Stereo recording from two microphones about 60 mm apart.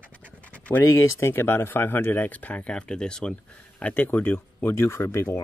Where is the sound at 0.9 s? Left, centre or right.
Left; by 3.3 s centre.